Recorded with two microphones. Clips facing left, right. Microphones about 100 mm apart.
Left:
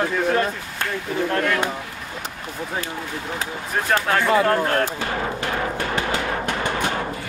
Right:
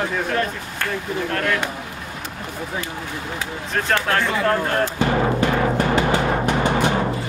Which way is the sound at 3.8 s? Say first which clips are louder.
Left 2 dB; 5° left (ahead or behind).